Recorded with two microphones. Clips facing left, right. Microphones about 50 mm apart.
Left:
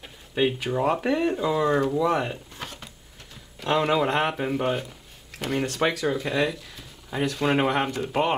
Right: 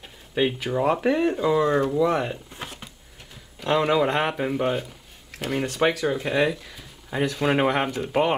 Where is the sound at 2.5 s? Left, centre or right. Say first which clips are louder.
Right 1 dB; centre.